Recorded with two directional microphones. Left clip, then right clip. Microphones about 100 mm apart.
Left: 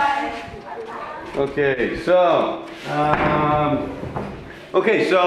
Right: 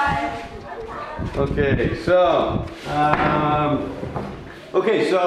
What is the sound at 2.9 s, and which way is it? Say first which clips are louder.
Music: even; 20° right (ahead or behind).